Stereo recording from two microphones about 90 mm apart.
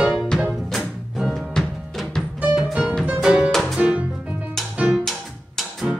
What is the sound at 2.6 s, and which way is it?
Music, 15° right (ahead or behind).